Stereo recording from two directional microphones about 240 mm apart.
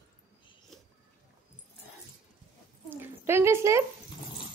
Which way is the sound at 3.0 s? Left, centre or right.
Centre.